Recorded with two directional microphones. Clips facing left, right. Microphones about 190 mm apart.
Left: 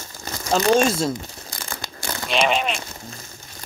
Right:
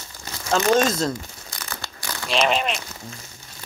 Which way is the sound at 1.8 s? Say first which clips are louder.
Left 5 dB; 25° left (ahead or behind).